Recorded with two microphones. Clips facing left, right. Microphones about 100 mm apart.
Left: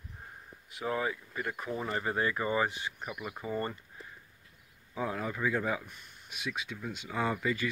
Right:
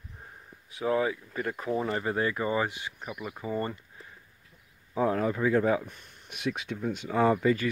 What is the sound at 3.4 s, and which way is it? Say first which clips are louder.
Speech: right 3 dB; 20° right (ahead or behind).